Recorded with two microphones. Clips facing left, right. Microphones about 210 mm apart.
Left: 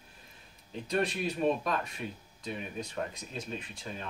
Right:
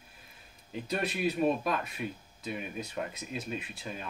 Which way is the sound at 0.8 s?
5° right (ahead or behind).